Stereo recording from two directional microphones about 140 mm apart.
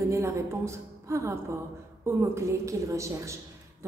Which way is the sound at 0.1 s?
20° right (ahead or behind).